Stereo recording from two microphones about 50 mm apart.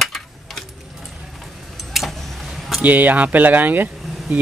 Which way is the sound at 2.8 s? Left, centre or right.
Right.